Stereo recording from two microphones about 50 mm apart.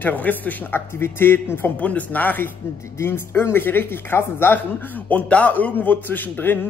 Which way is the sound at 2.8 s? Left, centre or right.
Left.